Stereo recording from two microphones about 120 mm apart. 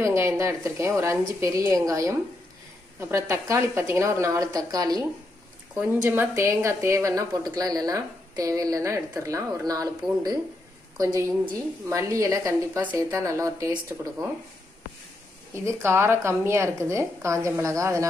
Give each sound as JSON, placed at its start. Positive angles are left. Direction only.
{"t": 0.0, "sound": "a woman's voice", "side_deg": -25}
{"t": 5.8, "sound": "a woman's voice", "side_deg": -15}
{"t": 11.0, "sound": "a woman's voice", "side_deg": -25}
{"t": 15.5, "sound": "a woman's voice", "side_deg": -20}